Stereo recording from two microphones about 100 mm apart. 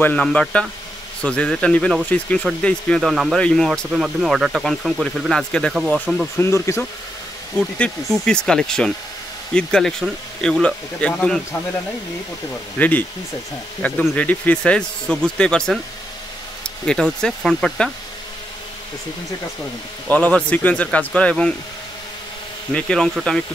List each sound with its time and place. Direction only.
0.0 s speech: 10° left (ahead or behind)
3.0 s speech: centre (ahead or behind)
5.9 s speech: 5° right (ahead or behind)
6.3 s speech: 30° left (ahead or behind)
8.1 s speech: 5° left (ahead or behind)
12.7 s speech: 15° left (ahead or behind)
20.1 s speech: 15° left (ahead or behind)
22.7 s speech: 10° left (ahead or behind)